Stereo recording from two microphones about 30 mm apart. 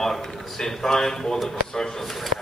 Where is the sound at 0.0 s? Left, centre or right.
Centre.